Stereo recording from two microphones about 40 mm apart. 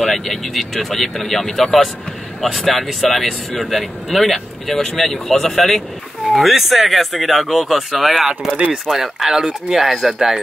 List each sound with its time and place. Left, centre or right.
0.0 s speech: centre
8.5 s speech: right
8.8 s speech: centre